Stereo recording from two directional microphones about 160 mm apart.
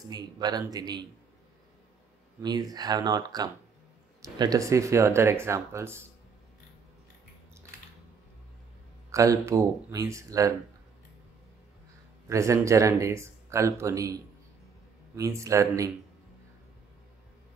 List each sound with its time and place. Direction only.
0.1 s speech: 25° right (ahead or behind)
2.4 s speech: 25° right (ahead or behind)
9.1 s speech: 20° right (ahead or behind)
12.3 s speech: 20° right (ahead or behind)